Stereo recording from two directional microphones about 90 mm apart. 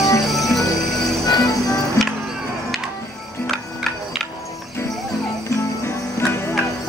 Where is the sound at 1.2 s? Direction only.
45° left (ahead or behind).